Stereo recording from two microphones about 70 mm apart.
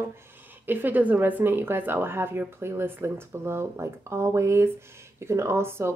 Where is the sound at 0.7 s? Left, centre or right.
Right.